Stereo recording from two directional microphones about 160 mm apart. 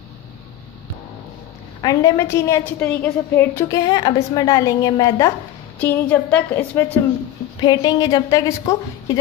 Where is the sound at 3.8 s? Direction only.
25° left (ahead or behind).